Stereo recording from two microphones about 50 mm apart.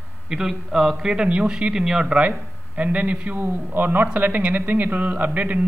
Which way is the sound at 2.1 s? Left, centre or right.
Right.